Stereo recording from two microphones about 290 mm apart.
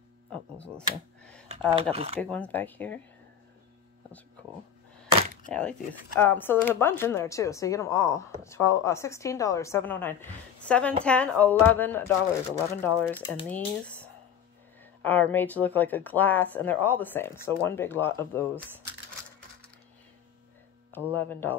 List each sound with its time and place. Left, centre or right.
0.7 s a sound: centre
1.7 s speech: centre
2.1 s speech: centre
5.5 s speech: centre
21.1 s speech: centre